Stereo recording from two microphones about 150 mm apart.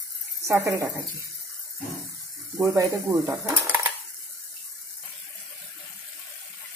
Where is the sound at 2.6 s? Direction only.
20° right (ahead or behind).